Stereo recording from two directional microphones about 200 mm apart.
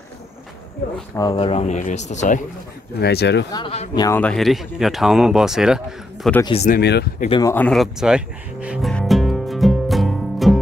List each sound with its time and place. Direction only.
1.1 s speech: 25° left (ahead or behind)
3.0 s speech: 55° left (ahead or behind)
3.5 s speech: 30° left (ahead or behind)
4.0 s speech: 10° left (ahead or behind)
6.4 s speech: 30° left (ahead or behind)
6.7 s speech: 55° left (ahead or behind)
7.2 s speech: 20° left (ahead or behind)
7.5 s music: 5° left (ahead or behind)